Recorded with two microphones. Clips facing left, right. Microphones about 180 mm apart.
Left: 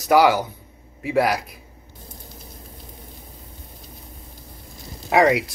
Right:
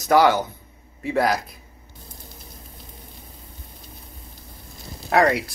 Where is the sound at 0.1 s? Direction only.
10° left (ahead or behind).